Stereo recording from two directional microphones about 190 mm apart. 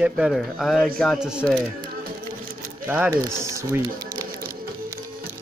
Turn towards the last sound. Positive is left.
turn(degrees=-15)  # may be behind; listen again after turning